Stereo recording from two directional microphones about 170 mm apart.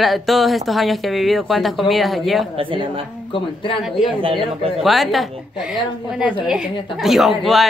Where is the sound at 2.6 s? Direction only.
30° right (ahead or behind).